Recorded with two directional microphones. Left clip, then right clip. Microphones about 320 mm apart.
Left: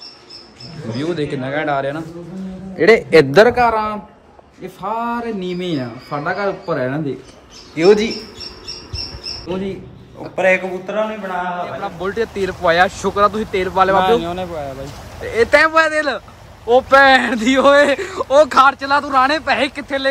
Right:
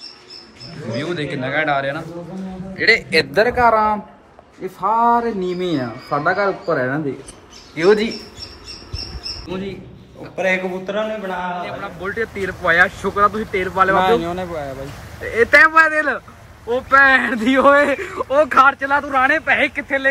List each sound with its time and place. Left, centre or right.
0.9 s a man's voice: centre
2.8 s a man's voice: left
3.6 s a man's voice: centre
9.5 s a man's voice: centre